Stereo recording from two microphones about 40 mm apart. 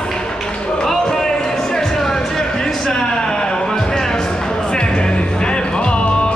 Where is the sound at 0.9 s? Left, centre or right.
Centre.